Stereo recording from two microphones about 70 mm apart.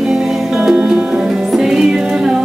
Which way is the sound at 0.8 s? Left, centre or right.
Centre.